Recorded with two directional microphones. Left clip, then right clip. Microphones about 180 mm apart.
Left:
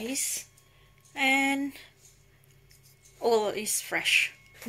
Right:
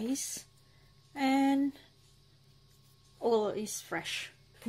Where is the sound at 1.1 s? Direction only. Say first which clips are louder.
Left 5 dB; 25° right (ahead or behind).